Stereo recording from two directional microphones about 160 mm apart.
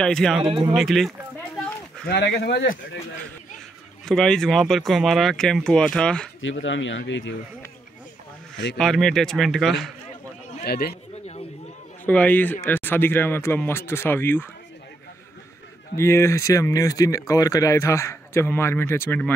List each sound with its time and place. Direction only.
0.0 s speech: 5° left (ahead or behind)
0.4 s speech: 30° right (ahead or behind)
0.7 s speech: centre (ahead or behind)
2.0 s speech: 90° left
4.0 s speech: 5° left (ahead or behind)
6.5 s speech: 90° left
8.7 s speech: 5° left (ahead or behind)
10.6 s speech: 75° left (ahead or behind)
12.1 s speech: 10° left (ahead or behind)
16.0 s speech: 15° left (ahead or behind)